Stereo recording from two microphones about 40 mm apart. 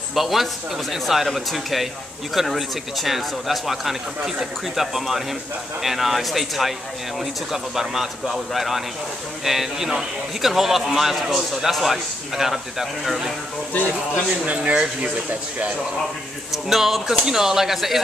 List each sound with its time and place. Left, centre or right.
0.1 s a man's voice: centre
14.4 s speech: right
16.5 s a man's voice: centre